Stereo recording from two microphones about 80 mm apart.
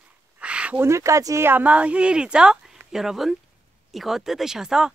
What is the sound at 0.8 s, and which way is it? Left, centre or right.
Speech, right.